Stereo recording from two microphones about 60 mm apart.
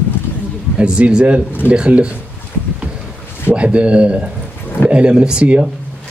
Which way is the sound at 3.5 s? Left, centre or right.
Centre.